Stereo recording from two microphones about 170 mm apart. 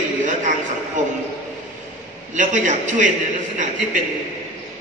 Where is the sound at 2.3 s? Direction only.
45° right (ahead or behind).